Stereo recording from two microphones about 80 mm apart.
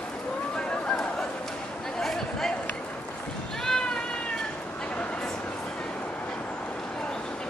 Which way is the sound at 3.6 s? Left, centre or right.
Centre.